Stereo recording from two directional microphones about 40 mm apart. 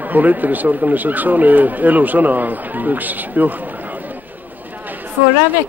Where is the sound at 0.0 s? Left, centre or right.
Right.